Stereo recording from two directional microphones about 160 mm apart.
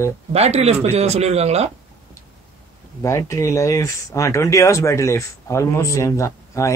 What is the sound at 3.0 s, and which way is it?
Speech, 20° left (ahead or behind).